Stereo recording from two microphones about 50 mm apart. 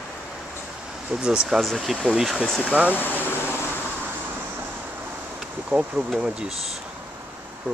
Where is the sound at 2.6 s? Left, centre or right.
Right.